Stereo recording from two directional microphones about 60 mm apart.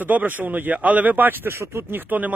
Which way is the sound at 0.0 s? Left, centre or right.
Right.